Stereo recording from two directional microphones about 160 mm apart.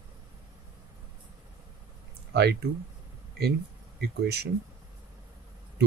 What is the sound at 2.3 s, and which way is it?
Speech, 90° right.